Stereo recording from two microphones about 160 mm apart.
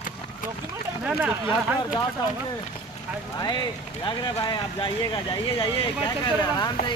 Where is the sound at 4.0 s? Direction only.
30° left (ahead or behind).